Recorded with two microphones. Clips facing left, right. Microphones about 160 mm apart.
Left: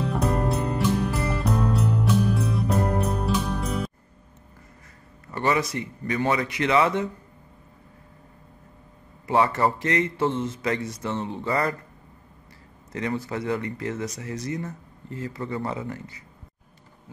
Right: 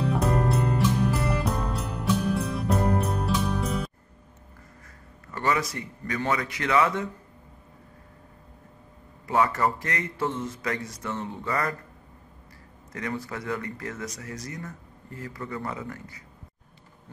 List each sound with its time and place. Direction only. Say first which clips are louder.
0.0 s music: even; centre (ahead or behind)
5.3 s speech: left 3 dB; 20° left (ahead or behind)
9.3 s speech: left 2 dB; 30° left (ahead or behind)
12.9 s speech: left 4 dB; 25° left (ahead or behind)